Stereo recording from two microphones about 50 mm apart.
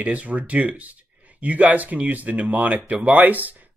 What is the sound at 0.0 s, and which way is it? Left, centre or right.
Speech, right.